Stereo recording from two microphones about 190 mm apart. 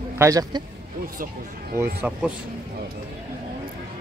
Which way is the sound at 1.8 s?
10° right (ahead or behind).